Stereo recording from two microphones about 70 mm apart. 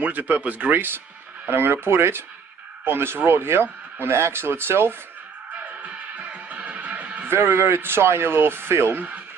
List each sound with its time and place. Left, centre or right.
0.0 s speech: right
5.6 s music: right
7.2 s speech: right